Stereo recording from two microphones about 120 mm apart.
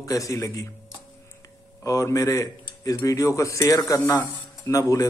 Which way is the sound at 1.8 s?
25° left (ahead or behind).